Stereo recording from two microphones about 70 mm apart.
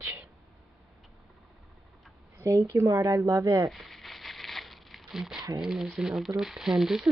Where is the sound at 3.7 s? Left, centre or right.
Centre.